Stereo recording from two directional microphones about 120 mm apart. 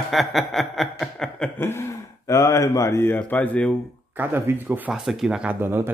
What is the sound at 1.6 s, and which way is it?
Speech, 20° left (ahead or behind).